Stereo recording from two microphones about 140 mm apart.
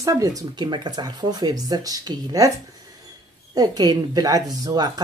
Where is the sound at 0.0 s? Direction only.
25° right (ahead or behind).